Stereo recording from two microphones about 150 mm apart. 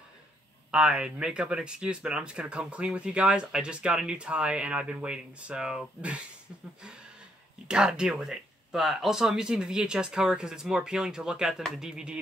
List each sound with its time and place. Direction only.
0.7 s speech: 5° right (ahead or behind)